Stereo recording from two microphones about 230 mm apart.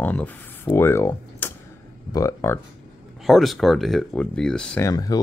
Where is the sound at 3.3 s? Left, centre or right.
Centre.